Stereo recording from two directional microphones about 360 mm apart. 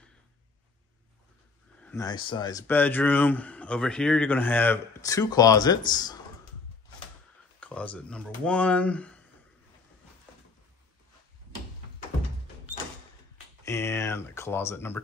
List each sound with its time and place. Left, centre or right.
1.8 s speech: centre
7.6 s speech: centre
13.7 s speech: centre